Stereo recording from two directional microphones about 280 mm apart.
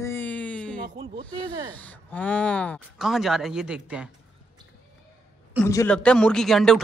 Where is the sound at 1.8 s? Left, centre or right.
Centre.